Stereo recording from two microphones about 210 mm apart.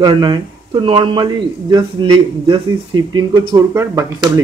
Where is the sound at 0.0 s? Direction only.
20° right (ahead or behind).